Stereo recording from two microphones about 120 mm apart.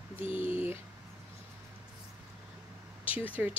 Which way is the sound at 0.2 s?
50° left (ahead or behind).